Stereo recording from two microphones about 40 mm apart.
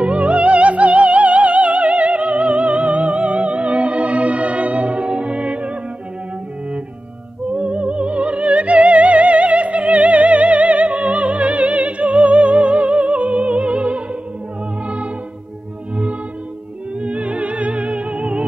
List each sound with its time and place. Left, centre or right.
0.0 s music: right
7.5 s music: right
17.0 s music: right